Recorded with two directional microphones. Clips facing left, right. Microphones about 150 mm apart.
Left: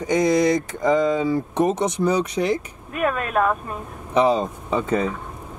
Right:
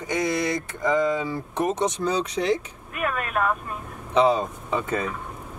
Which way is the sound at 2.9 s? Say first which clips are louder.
Left 5 dB; 30° left (ahead or behind).